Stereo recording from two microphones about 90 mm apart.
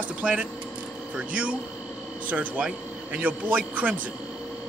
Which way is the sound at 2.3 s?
15° right (ahead or behind).